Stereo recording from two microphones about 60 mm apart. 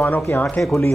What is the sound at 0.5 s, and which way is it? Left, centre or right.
Speech, centre.